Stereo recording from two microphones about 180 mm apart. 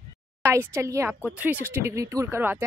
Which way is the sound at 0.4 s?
15° right (ahead or behind).